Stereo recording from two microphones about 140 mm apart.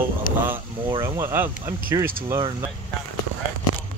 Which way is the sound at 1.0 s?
20° right (ahead or behind).